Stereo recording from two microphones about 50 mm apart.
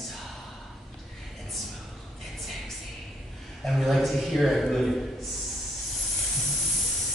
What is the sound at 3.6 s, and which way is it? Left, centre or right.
A man's voice, centre.